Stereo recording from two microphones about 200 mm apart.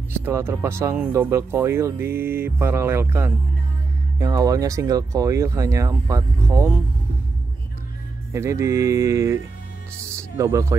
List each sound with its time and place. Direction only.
0.2 s speech: 10° right (ahead or behind)
8.3 s speech: 15° right (ahead or behind)